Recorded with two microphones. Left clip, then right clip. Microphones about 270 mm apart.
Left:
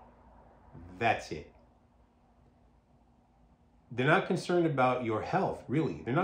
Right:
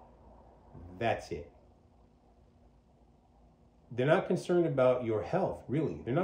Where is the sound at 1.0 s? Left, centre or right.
Centre.